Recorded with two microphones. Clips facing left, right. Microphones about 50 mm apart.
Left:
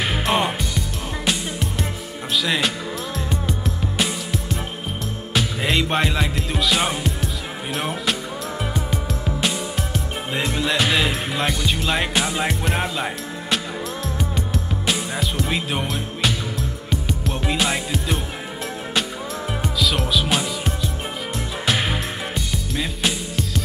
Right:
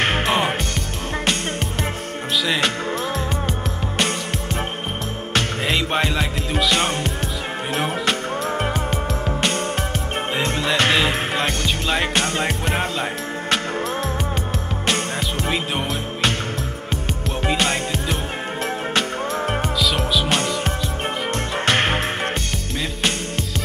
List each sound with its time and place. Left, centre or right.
0.2 s music: centre
2.4 s music: centre
5.3 s music: centre
8.5 s music: right
10.3 s music: centre
15.4 s music: centre
19.8 s music: centre
21.7 s music: right